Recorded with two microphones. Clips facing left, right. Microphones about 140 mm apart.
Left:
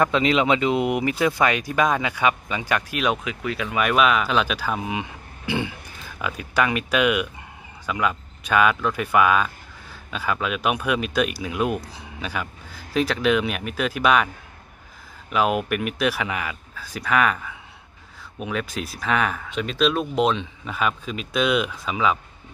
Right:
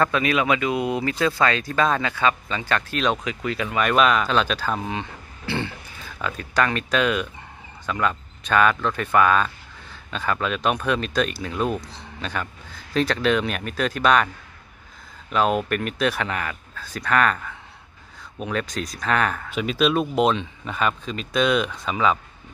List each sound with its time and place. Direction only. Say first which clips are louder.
0.0 s speech: left 2 dB; 20° left (ahead or behind); by 22.2 s 5° left (ahead or behind)